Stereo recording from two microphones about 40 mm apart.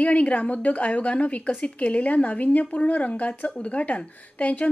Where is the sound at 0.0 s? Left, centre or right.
Left.